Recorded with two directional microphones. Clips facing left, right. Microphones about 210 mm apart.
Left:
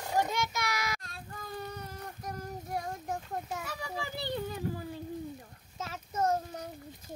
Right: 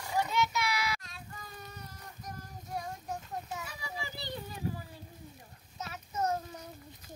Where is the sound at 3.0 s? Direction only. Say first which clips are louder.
Left 3 dB; 55° left (ahead or behind).